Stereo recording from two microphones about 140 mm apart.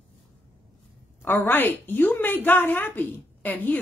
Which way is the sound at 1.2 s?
15° left (ahead or behind).